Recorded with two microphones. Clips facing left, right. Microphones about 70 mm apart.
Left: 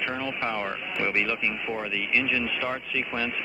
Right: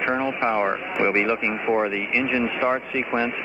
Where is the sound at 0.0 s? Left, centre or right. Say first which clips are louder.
Right 7 dB; right.